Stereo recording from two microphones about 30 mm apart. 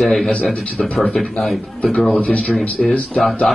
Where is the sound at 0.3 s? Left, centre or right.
Left.